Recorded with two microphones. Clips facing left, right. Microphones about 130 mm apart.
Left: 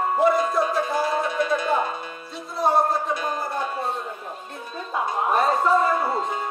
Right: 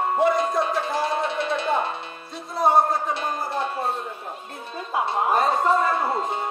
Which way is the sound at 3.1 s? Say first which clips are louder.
Even; 25° right (ahead or behind).